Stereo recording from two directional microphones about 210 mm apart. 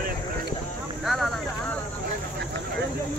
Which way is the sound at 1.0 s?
Centre (ahead or behind).